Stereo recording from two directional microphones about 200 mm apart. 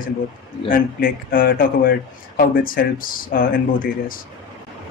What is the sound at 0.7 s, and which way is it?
Speech, 45° left (ahead or behind).